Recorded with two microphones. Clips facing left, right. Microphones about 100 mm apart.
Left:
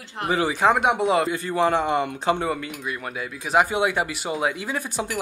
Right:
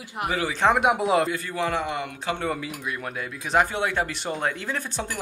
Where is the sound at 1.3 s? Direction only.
25° left (ahead or behind).